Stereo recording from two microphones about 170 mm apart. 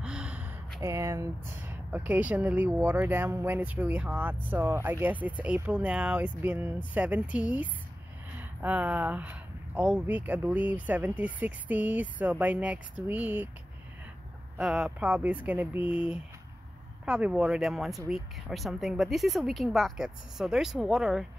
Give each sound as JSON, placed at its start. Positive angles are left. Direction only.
{"t": 0.0, "sound": "gasp", "side_deg": -5}
{"t": 0.7, "sound": "speech", "side_deg": -15}
{"t": 14.6, "sound": "speech", "side_deg": -5}